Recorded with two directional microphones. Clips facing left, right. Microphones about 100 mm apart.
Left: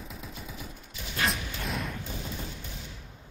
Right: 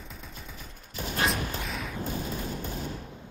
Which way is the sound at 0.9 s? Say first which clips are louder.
Right 2 dB; 40° right (ahead or behind).